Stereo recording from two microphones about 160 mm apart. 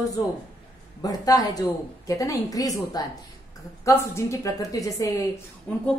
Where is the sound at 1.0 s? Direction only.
20° left (ahead or behind).